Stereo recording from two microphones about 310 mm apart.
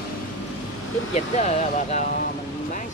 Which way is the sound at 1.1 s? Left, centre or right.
Left.